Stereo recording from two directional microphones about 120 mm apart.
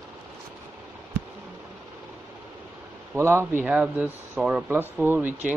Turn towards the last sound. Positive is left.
turn(degrees=-15)  # may be behind; listen again after turning